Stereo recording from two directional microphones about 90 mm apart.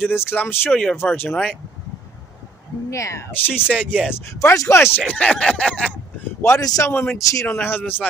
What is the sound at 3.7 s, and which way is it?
Speech, 10° left (ahead or behind).